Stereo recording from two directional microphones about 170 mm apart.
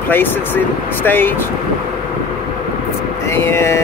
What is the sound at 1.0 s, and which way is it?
Speech, 10° left (ahead or behind).